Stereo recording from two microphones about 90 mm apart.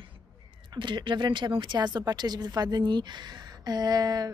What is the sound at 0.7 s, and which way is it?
A woman's voice, 60° right (ahead or behind).